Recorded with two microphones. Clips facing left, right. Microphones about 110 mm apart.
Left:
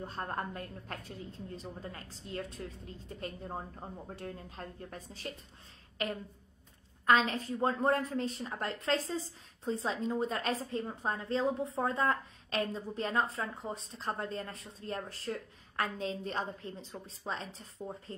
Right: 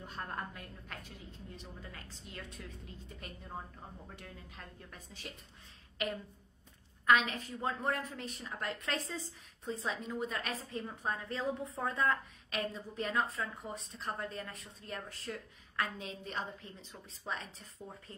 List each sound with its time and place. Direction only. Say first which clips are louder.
0.0 s a woman's voice: left 4 dB; 40° left (ahead or behind)
7.1 s a woman's voice: left 2 dB; 35° left (ahead or behind)